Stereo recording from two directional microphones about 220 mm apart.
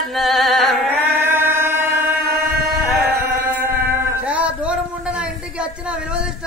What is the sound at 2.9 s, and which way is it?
Chant, 10° right (ahead or behind).